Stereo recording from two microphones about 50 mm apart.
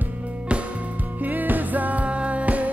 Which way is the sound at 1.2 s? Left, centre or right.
Right.